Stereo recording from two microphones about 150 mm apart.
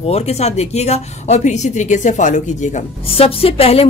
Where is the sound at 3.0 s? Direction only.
40° left (ahead or behind).